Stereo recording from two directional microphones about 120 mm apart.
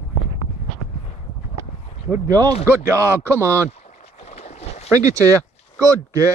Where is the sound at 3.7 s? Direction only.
65° left (ahead or behind).